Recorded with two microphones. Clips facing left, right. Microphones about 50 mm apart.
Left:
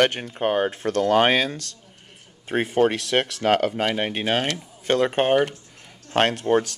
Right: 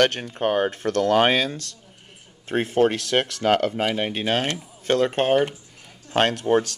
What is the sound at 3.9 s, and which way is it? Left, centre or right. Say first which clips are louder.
Speech: even; centre.